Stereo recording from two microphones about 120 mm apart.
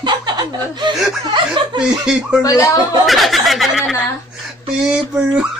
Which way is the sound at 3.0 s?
Centre (ahead or behind).